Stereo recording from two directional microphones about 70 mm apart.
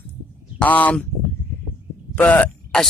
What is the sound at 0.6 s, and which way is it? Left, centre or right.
Speech, left.